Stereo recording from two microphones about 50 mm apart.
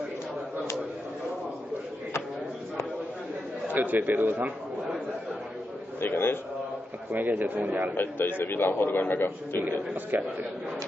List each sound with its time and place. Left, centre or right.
3.6 s speech: right
5.9 s a man's voice: left
7.1 s speech: right
7.9 s a man's voice: left
10.1 s speech: right